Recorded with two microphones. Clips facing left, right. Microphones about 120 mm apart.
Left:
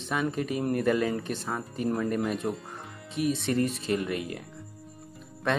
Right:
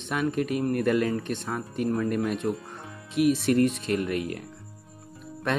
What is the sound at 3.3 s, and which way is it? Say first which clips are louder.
Speech: right 4 dB; centre (ahead or behind).